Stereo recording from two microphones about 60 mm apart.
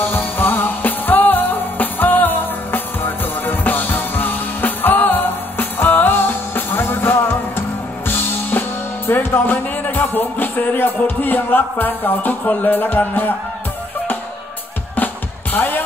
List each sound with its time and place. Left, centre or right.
0.0 s music: left
15.5 s music: left